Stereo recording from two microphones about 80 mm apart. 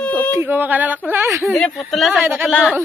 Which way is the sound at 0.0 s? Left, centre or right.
Centre.